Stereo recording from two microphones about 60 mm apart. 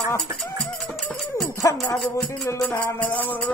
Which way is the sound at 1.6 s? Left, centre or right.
Left.